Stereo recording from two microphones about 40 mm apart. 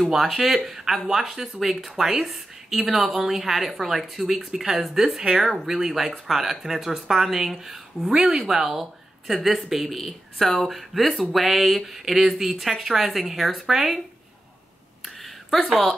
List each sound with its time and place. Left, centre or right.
0.1 s speech: centre
8.1 s speech: centre